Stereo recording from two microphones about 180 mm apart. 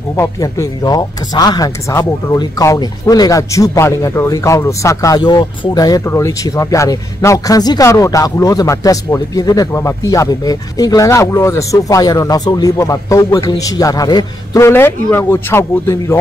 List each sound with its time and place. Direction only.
0.1 s speech: 20° left (ahead or behind)